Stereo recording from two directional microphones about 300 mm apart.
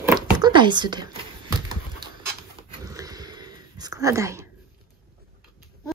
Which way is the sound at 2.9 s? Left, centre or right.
Centre.